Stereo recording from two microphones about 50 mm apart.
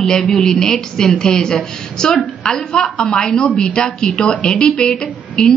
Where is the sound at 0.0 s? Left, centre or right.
Centre.